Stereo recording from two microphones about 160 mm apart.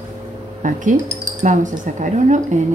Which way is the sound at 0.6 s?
55° right (ahead or behind).